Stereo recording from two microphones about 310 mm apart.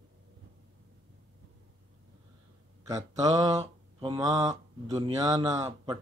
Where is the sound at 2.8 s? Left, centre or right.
Centre.